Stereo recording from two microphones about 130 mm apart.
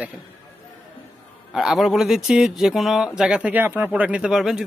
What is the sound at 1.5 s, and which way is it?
Speech, centre (ahead or behind).